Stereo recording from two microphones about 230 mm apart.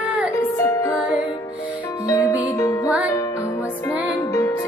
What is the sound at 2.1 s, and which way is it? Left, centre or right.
Music, centre.